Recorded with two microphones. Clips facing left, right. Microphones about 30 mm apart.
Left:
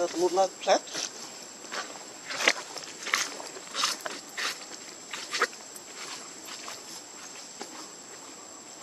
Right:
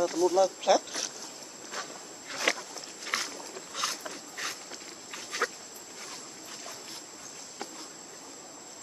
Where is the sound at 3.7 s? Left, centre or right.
Left.